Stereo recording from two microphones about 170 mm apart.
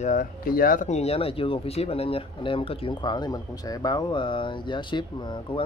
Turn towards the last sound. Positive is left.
turn(degrees=30)  # may be behind; listen again after turning